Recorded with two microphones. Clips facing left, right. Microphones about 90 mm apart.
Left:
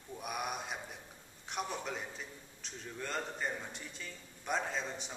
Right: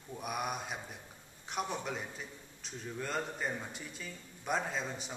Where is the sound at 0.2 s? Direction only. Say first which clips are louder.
Right 2 dB; centre (ahead or behind).